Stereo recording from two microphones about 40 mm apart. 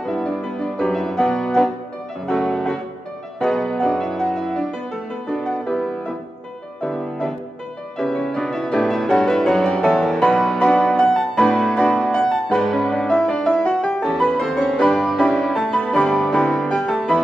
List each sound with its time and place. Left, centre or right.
0.0 s music: centre
6.9 s music: centre
10.6 s music: centre
13.5 s music: left